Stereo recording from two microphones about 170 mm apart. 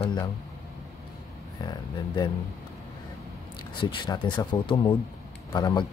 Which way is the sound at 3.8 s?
30° left (ahead or behind).